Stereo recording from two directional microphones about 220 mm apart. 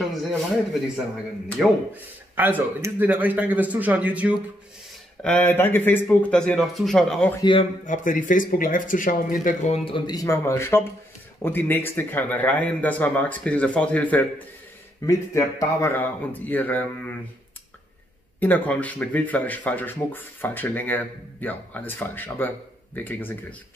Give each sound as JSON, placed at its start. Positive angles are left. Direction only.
{"t": 0.0, "sound": "speech", "side_deg": 0}
{"t": 1.6, "sound": "a man's voice", "side_deg": -10}
{"t": 5.2, "sound": "speech", "side_deg": 5}
{"t": 7.8, "sound": "speech", "side_deg": 35}
{"t": 9.8, "sound": "speech", "side_deg": 20}
{"t": 18.4, "sound": "speech", "side_deg": 5}